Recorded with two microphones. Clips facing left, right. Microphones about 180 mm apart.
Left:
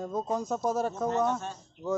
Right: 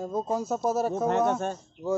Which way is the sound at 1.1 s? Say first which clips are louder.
Right 4 dB; 60° right (ahead or behind).